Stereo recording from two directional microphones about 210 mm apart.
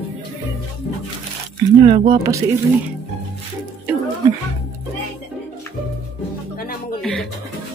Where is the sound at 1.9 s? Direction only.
25° right (ahead or behind).